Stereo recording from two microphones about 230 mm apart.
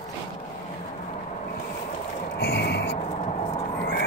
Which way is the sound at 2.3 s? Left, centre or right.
Left.